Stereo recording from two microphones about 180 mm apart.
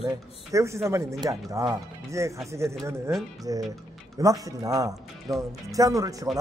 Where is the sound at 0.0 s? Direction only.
15° right (ahead or behind).